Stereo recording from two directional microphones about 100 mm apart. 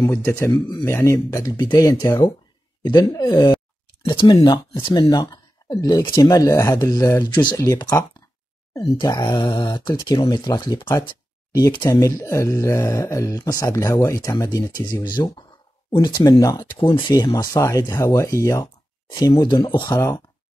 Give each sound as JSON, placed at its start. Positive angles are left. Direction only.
{"t": 0.1, "sound": "speech", "side_deg": 25}
{"t": 1.6, "sound": "speech", "side_deg": 40}
{"t": 2.8, "sound": "speech", "side_deg": 50}
{"t": 7.5, "sound": "speech", "side_deg": 35}
{"t": 9.0, "sound": "speech", "side_deg": 45}
{"t": 11.1, "sound": "a sound", "side_deg": 45}
{"t": 11.9, "sound": "speech", "side_deg": 30}
{"t": 16.1, "sound": "speech", "side_deg": 35}
{"t": 16.7, "sound": "speech", "side_deg": 55}
{"t": 17.1, "sound": "speech", "side_deg": 40}
{"t": 19.0, "sound": "speech", "side_deg": 45}
{"t": 19.9, "sound": "speech", "side_deg": 35}